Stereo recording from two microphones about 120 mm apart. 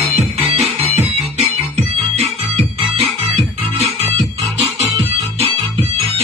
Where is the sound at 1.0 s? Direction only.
65° right (ahead or behind).